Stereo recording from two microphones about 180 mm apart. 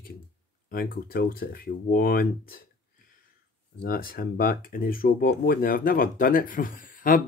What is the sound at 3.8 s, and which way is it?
Speech, 55° left (ahead or behind).